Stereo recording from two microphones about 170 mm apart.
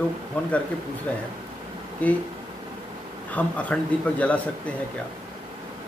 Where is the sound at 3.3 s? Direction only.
10° left (ahead or behind).